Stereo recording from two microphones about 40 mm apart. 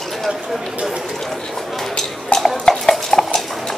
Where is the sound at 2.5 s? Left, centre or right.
Centre.